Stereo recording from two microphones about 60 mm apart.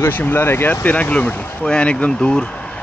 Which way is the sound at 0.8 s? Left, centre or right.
Left.